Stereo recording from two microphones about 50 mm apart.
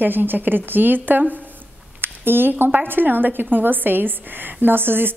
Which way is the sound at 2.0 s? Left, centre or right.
Right.